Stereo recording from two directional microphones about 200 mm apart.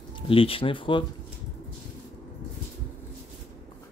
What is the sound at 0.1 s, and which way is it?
Speech, 25° left (ahead or behind).